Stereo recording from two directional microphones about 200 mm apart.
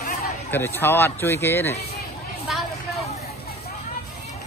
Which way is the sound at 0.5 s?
10° left (ahead or behind).